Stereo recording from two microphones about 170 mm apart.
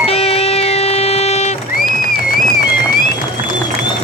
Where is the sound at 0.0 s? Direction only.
35° left (ahead or behind).